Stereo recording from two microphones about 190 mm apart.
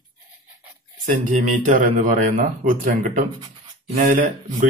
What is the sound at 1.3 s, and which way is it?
Speech, 40° right (ahead or behind).